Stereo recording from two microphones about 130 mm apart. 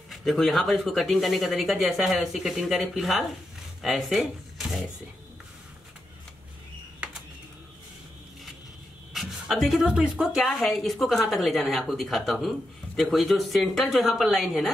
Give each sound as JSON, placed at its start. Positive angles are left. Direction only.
{"t": 0.1, "sound": "speech", "side_deg": 0}
{"t": 9.1, "sound": "speech", "side_deg": 0}